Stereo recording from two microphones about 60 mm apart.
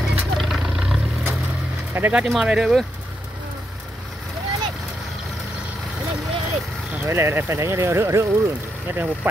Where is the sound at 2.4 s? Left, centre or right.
Centre.